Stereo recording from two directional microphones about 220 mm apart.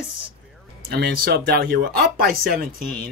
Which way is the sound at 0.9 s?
45° right (ahead or behind).